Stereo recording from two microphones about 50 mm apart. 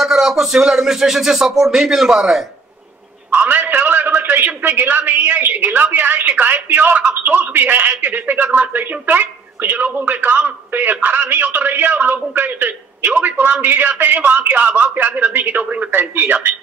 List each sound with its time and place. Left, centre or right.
0.0 s speech: centre
3.3 s a sound: right
4.6 s a man's voice: right
13.0 s a man's voice: right